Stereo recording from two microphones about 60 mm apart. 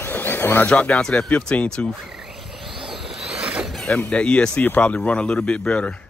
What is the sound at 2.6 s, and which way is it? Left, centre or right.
Vehicle, centre.